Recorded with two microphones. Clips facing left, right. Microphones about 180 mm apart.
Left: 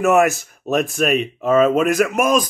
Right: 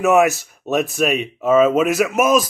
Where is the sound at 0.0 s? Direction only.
Centre (ahead or behind).